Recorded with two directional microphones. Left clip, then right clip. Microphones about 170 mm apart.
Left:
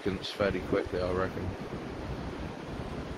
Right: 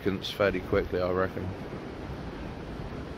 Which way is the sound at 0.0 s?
45° right (ahead or behind).